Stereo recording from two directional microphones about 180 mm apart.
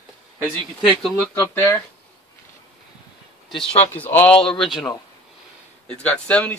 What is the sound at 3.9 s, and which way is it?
A man's voice, 10° left (ahead or behind).